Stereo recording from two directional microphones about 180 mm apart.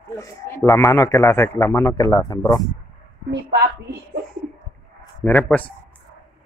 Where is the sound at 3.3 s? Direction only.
65° right (ahead or behind).